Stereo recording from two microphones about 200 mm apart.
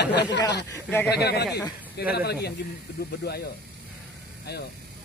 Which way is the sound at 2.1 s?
55° left (ahead or behind).